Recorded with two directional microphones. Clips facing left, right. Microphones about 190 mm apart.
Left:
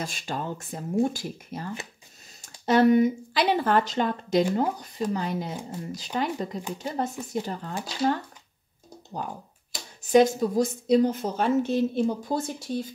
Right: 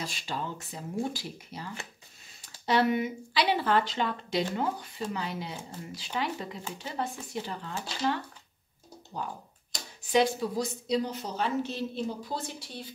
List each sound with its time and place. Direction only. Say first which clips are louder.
0.0 s a woman's voice: left 4 dB; 50° left (ahead or behind)
10.0 s a woman's voice: left 6 dB; 45° left (ahead or behind)